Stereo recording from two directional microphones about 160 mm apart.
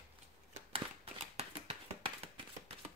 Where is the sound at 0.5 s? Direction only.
35° right (ahead or behind).